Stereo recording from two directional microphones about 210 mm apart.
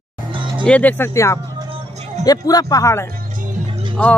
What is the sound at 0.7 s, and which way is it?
Speech, 5° left (ahead or behind).